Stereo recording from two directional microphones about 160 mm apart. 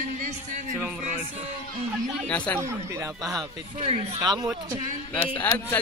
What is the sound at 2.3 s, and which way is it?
Speech, 10° left (ahead or behind).